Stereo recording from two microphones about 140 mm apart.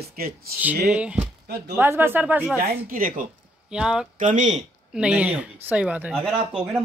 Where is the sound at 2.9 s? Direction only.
80° right.